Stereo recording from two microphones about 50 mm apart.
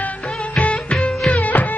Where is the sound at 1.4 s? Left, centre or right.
Left.